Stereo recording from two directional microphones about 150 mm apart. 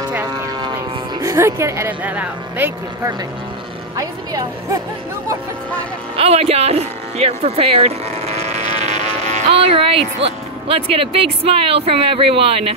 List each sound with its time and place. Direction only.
1.2 s speech: 20° right (ahead or behind)
3.9 s speech: 25° right (ahead or behind)
6.1 s speech: 40° right (ahead or behind)
8.7 s insect: 50° right (ahead or behind)
10.2 s speech: 40° right (ahead or behind)